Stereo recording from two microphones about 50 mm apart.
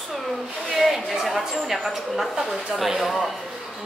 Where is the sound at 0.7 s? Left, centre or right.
Centre.